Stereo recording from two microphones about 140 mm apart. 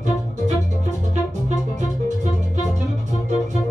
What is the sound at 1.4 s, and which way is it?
Music, 55° right (ahead or behind).